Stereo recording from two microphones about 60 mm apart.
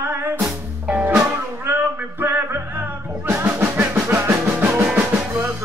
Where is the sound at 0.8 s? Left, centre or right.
Right.